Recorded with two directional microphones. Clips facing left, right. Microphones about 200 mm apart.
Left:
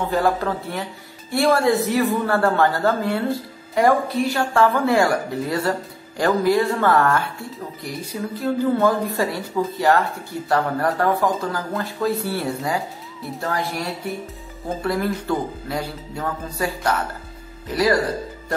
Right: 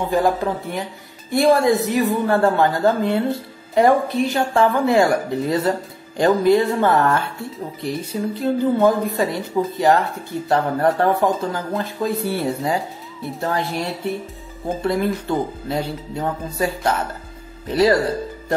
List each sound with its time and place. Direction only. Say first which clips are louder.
0.0 s a woman's voice: right 2 dB; 15° right (ahead or behind)